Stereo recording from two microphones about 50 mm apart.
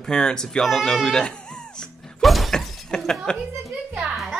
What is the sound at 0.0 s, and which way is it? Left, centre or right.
Speech, centre.